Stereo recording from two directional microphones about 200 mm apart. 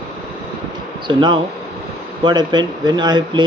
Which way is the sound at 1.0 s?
25° right (ahead or behind).